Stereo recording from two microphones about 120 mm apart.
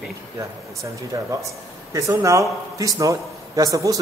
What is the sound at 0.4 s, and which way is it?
Speech, 25° right (ahead or behind).